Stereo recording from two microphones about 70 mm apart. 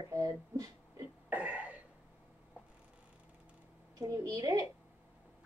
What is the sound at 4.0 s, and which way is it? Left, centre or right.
Speech, right.